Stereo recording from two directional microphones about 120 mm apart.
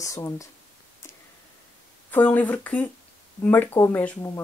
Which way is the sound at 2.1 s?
15° left (ahead or behind).